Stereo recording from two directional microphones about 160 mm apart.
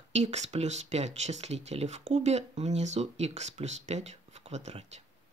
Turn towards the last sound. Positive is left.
turn(degrees=-40)  # may be behind; listen again after turning